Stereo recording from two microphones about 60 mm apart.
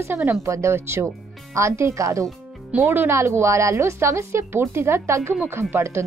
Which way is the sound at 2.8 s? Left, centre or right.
Right.